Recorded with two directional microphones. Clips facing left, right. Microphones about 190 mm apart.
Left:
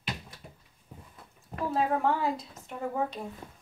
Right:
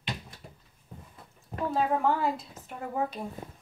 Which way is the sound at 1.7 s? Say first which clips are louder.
Right 1 dB; centre (ahead or behind).